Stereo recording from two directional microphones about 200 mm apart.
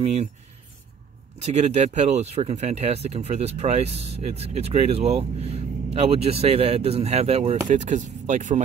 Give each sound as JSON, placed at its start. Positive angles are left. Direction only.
{"t": 0.0, "sound": "speech", "side_deg": -30}
{"t": 1.4, "sound": "speech", "side_deg": -35}